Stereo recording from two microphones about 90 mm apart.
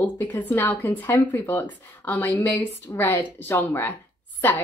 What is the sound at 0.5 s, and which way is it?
A woman's voice, 20° left (ahead or behind).